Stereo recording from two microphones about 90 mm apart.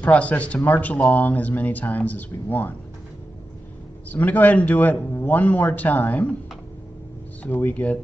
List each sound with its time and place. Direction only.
0.0 s a man's voice: 15° left (ahead or behind)
4.1 s a man's voice: 20° left (ahead or behind)
7.4 s a man's voice: 20° left (ahead or behind)